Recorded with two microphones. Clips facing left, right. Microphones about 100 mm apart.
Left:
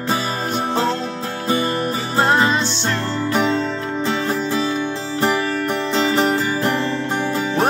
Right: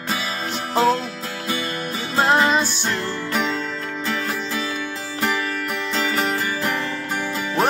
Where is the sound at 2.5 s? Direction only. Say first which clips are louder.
Left 1 dB; 10° right (ahead or behind).